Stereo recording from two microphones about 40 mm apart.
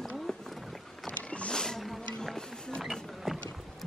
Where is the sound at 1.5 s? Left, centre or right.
Centre.